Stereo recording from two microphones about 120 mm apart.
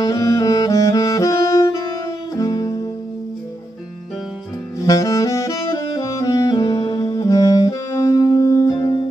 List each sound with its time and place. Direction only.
0.0 s saxophone: 30° left (ahead or behind)
4.7 s saxophone: 30° left (ahead or behind)
7.1 s music: 30° left (ahead or behind)